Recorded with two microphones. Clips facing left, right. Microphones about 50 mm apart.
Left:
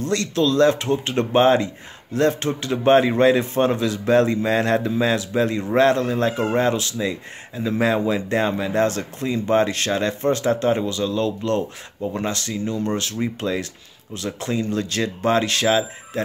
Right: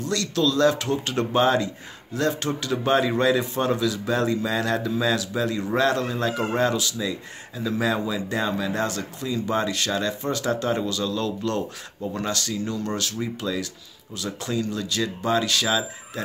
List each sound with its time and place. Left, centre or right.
0.0 s a man's voice: left